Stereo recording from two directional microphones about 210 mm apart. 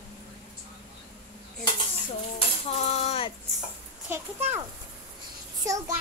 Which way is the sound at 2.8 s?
30° left (ahead or behind).